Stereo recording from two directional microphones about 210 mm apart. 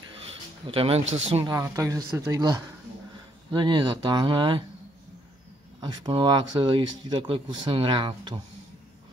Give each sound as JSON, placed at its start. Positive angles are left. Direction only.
{"t": 0.3, "sound": "speech", "side_deg": -25}
{"t": 1.5, "sound": "speech", "side_deg": -15}
{"t": 5.8, "sound": "speech", "side_deg": -20}